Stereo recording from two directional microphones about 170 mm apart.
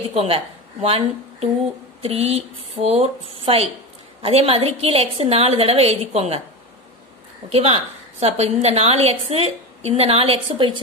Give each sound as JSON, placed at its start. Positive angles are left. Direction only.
{"t": 0.1, "sound": "a woman's voice", "side_deg": -35}
{"t": 7.4, "sound": "a woman's voice", "side_deg": -35}